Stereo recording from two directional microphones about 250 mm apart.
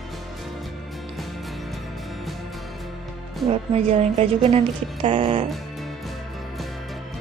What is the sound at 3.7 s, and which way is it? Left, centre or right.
A woman's voice, right.